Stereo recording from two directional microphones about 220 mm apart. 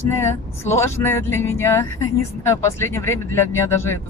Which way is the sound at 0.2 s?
10° left (ahead or behind).